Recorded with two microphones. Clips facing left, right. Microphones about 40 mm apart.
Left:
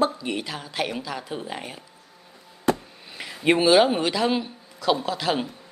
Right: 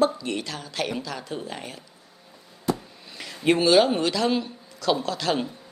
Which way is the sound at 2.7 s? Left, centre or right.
Left.